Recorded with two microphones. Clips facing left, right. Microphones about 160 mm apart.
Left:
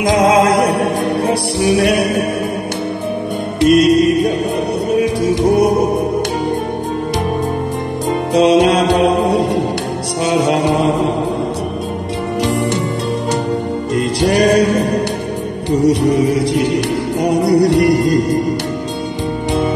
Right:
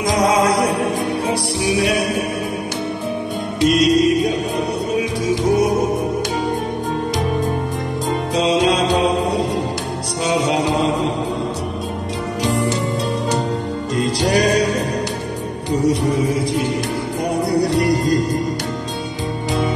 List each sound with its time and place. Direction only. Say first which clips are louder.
0.6 s music: left 4 dB; 65° left (ahead or behind)
3.6 s music: left 4 dB; 55° left (ahead or behind)
8.4 s mantra: left 6 dB; 65° left (ahead or behind)
13.9 s music: left 3 dB; 60° left (ahead or behind)
15.8 s music: left 5 dB; 70° left (ahead or behind)